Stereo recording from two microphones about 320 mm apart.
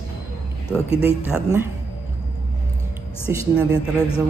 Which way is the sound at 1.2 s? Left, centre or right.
Centre.